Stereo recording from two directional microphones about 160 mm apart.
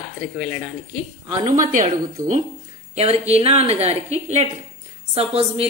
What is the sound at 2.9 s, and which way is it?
A woman's voice, 40° right (ahead or behind).